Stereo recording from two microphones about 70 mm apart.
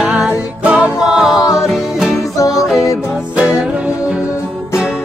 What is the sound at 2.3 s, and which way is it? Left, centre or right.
Music, left.